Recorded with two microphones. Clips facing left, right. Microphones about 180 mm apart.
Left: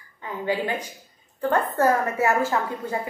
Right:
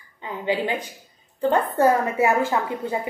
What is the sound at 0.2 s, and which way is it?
Speech, 20° right (ahead or behind).